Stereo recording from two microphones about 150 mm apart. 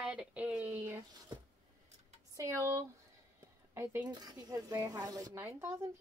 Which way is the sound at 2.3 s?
20° right (ahead or behind).